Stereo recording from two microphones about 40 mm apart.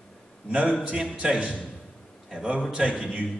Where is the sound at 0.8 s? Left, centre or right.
Right.